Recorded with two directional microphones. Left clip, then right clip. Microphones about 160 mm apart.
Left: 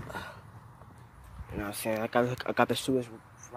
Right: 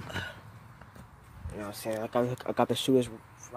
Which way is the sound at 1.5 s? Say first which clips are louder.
Left 2 dB; 30° left (ahead or behind).